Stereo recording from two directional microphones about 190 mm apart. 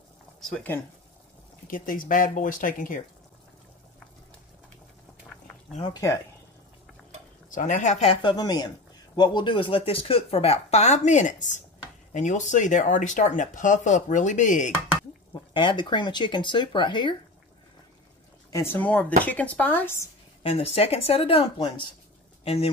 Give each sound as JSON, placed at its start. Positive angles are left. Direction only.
{"t": 0.4, "sound": "speech", "side_deg": 0}
{"t": 1.7, "sound": "speech", "side_deg": 45}
{"t": 5.9, "sound": "speech", "side_deg": 20}
{"t": 7.4, "sound": "a man's voice", "side_deg": 45}
{"t": 15.5, "sound": "speech", "side_deg": 25}
{"t": 18.5, "sound": "speech", "side_deg": 15}
{"t": 20.4, "sound": "a man's voice", "side_deg": 30}